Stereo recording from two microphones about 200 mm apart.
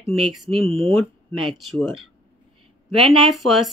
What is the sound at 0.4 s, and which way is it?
A woman's voice, centre (ahead or behind).